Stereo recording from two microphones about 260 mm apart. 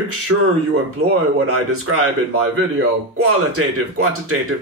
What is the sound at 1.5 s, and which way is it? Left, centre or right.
Speech, right.